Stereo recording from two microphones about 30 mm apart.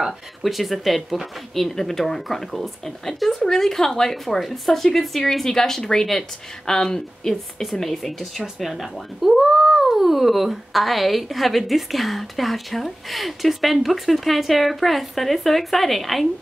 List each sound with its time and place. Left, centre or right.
0.4 s speech: centre
4.4 s speech: centre
5.2 s speech: centre
7.8 s speech: centre